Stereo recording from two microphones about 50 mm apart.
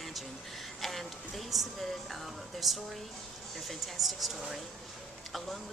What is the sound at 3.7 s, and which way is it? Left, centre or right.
Speech, centre.